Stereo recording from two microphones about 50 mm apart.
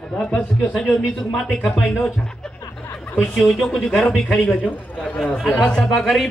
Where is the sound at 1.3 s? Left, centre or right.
Centre.